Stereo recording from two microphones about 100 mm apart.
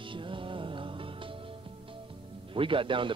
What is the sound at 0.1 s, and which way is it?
Music, 55° right (ahead or behind).